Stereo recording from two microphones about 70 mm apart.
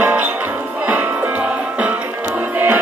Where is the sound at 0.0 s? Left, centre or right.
Right.